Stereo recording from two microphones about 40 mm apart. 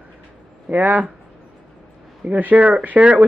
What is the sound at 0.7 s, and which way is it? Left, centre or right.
Speech, right.